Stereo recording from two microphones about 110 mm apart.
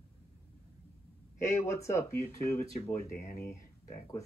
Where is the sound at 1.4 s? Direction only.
25° left (ahead or behind).